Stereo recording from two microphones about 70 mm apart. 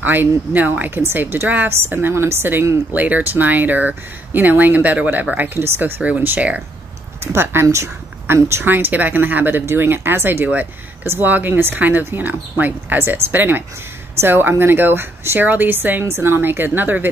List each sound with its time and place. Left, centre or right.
0.0 s speech: right
5.6 s speech: right
7.6 s speech: right